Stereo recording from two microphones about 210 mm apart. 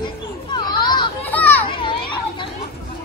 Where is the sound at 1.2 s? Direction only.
10° left (ahead or behind).